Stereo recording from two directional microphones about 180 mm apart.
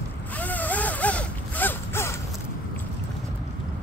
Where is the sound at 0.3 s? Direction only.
10° left (ahead or behind).